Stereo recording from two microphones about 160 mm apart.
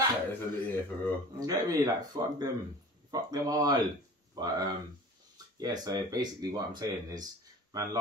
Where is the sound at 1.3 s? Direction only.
20° right (ahead or behind).